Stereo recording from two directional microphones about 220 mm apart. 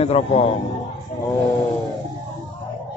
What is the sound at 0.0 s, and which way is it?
Speech, 30° left (ahead or behind).